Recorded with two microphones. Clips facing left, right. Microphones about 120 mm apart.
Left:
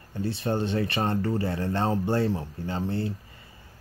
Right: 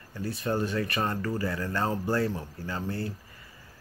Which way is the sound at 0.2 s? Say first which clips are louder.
Left 2 dB; 25° left (ahead or behind).